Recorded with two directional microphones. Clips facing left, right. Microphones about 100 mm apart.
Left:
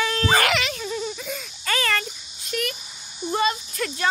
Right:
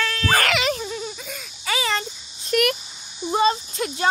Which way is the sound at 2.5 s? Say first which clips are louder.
Right 8 dB; 55° right (ahead or behind).